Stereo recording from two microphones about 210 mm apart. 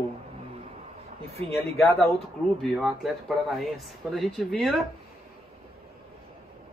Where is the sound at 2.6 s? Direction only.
Centre (ahead or behind).